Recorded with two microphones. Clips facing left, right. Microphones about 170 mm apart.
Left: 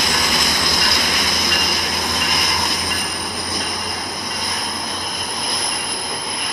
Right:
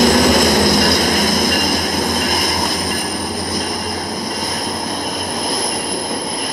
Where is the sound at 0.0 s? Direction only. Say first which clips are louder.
Right 11 dB; 45° right (ahead or behind).